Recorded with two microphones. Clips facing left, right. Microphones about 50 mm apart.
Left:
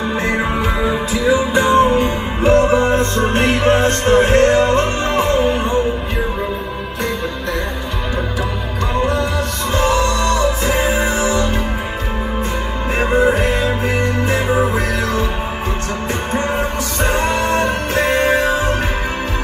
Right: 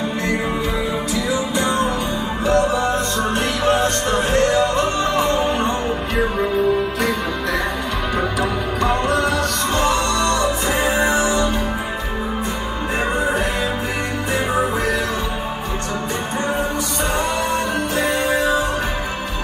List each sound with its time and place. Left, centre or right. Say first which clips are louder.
1.1 s music: left 8 dB; left
5.3 s music: left 3 dB; centre
9.0 s music: even; centre
9.8 s music: left 4 dB; left
11.1 s music: even; right